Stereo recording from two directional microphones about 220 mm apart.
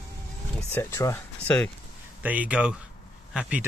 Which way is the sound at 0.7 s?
10° left (ahead or behind).